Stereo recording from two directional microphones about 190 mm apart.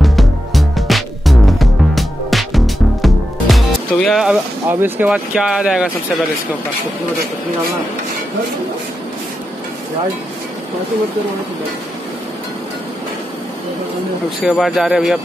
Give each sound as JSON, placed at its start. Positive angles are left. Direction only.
{"t": 0.0, "sound": "music", "side_deg": 0}
{"t": 14.4, "sound": "speech", "side_deg": 0}